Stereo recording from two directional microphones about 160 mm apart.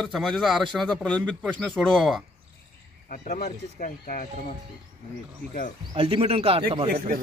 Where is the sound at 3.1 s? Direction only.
55° left (ahead or behind).